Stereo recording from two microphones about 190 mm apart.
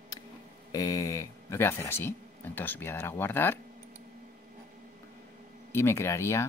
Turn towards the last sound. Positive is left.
turn(degrees=15)  # may be behind; listen again after turning